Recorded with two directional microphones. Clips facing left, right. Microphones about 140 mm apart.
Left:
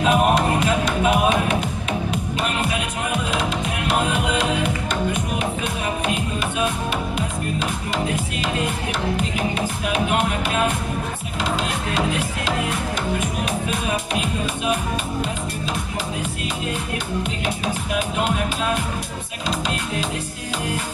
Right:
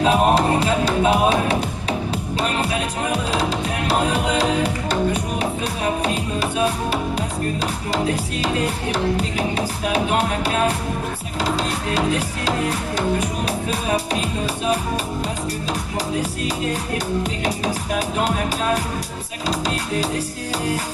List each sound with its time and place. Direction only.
0.0 s music: 35° right (ahead or behind)
7.9 s music: 35° right (ahead or behind)
17.2 s music: 40° right (ahead or behind)